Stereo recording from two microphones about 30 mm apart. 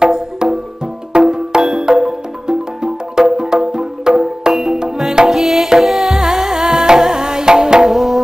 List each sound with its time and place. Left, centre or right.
0.0 s music: right
5.3 s music: centre; by 7.9 s right
7.9 s music: centre